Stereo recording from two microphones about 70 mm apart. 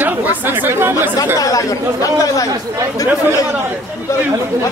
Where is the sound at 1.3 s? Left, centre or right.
Left.